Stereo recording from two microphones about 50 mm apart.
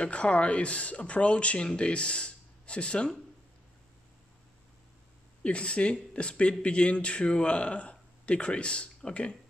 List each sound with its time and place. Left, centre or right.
0.0 s speech: left
5.4 s speech: left